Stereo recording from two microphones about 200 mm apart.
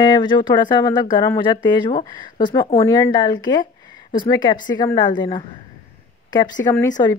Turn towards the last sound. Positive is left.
turn(degrees=15)  # may be behind; listen again after turning